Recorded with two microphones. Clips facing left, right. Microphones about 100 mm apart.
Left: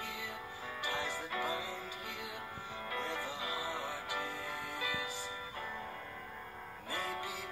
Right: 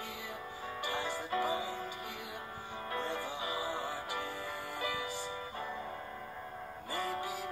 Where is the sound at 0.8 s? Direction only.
45° right (ahead or behind).